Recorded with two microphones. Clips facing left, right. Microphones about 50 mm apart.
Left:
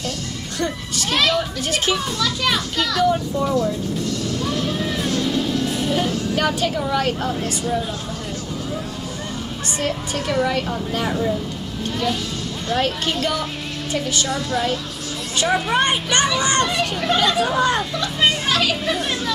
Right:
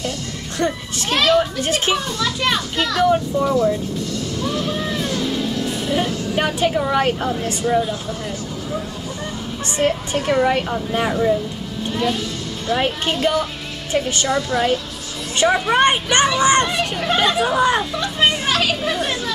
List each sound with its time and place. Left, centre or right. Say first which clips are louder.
0.6 s speech: right 3 dB; right
2.1 s a child's voice: right 1 dB; centre
6.3 s speech: right 4 dB; right
9.8 s a child's voice: right 5 dB; right
12.6 s a woman's voice: right 2 dB; right
14.3 s a child's voice: right 6 dB; centre
15.7 s speech: right 3 dB; right
17.6 s a sound: right 2 dB; centre
18.9 s chatter: right 1 dB; centre